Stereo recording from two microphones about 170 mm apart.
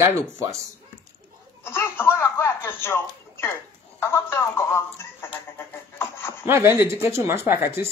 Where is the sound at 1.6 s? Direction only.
15° left (ahead or behind).